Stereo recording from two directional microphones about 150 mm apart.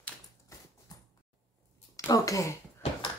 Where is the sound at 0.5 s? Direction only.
20° left (ahead or behind).